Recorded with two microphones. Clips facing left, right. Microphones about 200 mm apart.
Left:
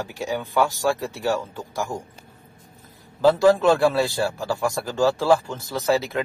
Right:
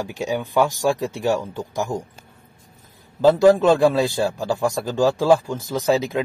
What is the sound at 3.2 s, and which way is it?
A man's voice, 20° right (ahead or behind).